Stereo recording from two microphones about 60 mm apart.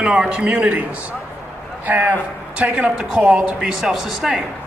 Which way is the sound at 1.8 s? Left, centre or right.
Right.